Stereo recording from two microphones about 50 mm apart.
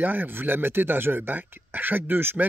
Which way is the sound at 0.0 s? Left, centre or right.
Right.